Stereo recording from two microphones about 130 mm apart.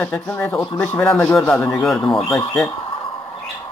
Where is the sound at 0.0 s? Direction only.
15° left (ahead or behind).